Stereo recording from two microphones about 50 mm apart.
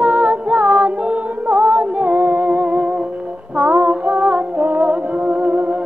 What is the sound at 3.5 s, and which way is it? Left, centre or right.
Female singing, right.